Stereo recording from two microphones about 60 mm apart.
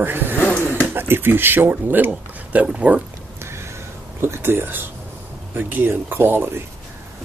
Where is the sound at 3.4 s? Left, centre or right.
Right.